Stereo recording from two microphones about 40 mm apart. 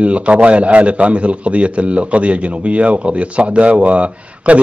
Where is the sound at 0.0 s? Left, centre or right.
Right.